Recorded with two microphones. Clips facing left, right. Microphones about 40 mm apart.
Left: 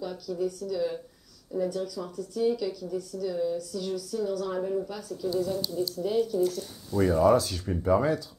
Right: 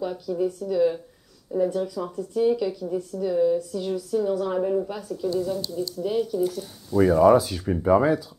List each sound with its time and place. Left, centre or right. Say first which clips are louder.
0.0 s speech: right 5 dB; centre
5.3 s speech: right 1 dB; centre